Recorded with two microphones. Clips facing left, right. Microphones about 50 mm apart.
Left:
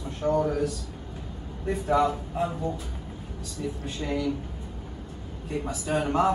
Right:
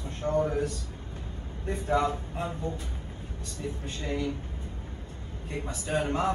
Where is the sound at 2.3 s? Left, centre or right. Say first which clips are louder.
Left 5 dB; left.